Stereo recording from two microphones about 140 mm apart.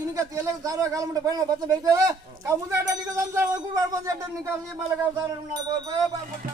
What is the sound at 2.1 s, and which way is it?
Speech, 20° right (ahead or behind).